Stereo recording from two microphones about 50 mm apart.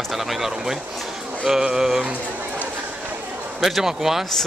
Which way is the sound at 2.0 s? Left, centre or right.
Right.